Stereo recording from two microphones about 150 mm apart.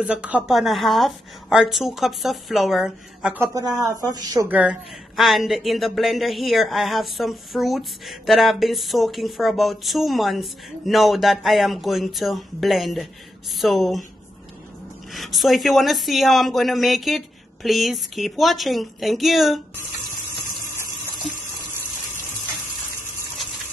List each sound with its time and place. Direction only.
0.0 s a woman's voice: 10° right (ahead or behind)
3.5 s speech: 25° right (ahead or behind)
4.5 s a woman's voice: 5° right (ahead or behind)
15.1 s a woman's voice: centre (ahead or behind)